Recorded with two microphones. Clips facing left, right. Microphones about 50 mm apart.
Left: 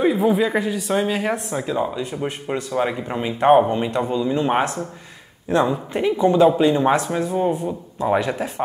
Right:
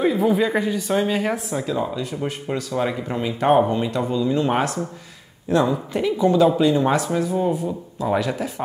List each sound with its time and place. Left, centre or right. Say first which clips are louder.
0.0 s speech: left 1 dB; centre
1.6 s speech: left 1 dB; centre
7.5 s speech: even; left
8.1 s speech: left 2 dB; left